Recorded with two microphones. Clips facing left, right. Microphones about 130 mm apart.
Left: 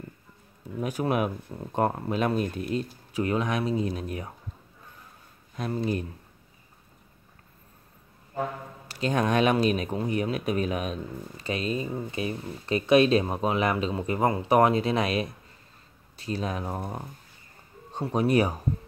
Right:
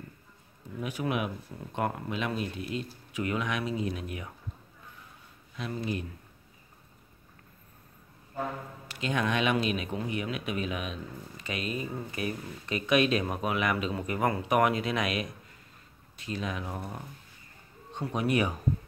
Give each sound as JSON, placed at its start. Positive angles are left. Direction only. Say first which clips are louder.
{"t": 0.7, "sound": "speech", "louder": "left 5 dB", "side_deg": 40}
{"t": 5.6, "sound": "speech", "louder": "left 5 dB", "side_deg": 35}
{"t": 8.8, "sound": "speech", "louder": "left 5 dB", "side_deg": 35}